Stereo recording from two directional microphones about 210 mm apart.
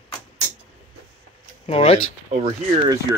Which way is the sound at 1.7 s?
30° left (ahead or behind).